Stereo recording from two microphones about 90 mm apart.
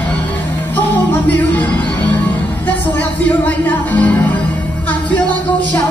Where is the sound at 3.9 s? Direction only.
15° left (ahead or behind).